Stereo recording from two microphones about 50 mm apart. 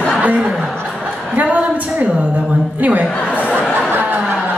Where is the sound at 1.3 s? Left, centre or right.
Right.